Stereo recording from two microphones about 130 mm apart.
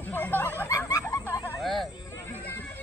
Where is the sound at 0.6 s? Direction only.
25° left (ahead or behind).